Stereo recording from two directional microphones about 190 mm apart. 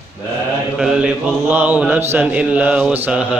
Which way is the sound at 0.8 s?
5° right (ahead or behind).